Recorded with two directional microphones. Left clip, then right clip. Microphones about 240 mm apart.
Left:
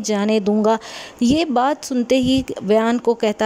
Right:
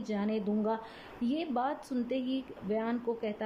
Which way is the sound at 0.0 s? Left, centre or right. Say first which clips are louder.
Left 16 dB; left.